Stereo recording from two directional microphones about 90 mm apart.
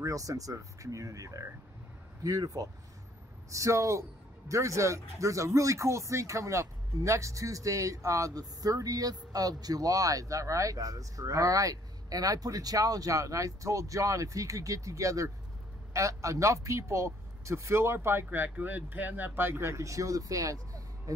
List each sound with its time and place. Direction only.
0.0 s speech: 40° right (ahead or behind)